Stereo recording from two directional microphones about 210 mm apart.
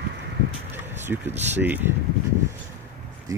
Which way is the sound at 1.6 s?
10° right (ahead or behind).